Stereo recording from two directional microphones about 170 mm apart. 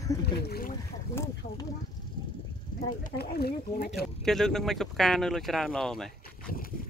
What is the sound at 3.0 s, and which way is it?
Speech, 65° left (ahead or behind).